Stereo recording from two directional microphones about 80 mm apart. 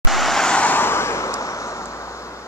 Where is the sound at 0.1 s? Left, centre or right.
Centre.